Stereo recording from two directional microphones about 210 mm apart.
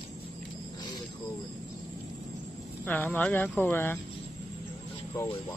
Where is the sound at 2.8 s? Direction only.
10° left (ahead or behind).